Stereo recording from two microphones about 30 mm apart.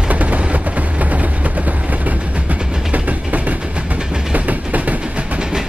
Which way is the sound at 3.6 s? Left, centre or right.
Right.